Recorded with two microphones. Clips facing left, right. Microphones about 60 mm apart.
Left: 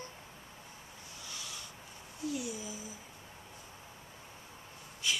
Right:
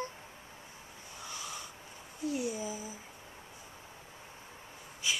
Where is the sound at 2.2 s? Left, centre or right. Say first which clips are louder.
Right 4 dB; right.